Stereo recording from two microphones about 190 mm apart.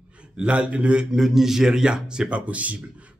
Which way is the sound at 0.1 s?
5° right (ahead or behind).